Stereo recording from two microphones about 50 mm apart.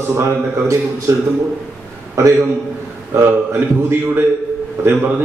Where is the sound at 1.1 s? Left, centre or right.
Right.